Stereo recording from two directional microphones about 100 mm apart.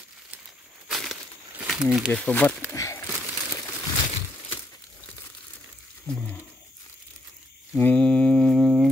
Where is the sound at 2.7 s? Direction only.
30° left (ahead or behind).